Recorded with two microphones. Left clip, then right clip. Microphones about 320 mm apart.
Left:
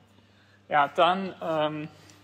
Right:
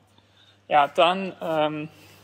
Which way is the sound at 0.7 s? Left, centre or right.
Right.